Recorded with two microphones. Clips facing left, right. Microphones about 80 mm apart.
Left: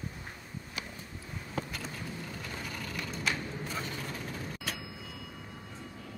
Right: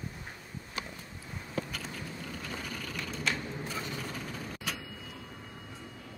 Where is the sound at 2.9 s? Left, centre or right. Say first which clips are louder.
Even; centre.